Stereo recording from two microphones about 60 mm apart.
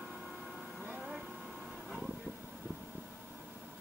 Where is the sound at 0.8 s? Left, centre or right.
Centre.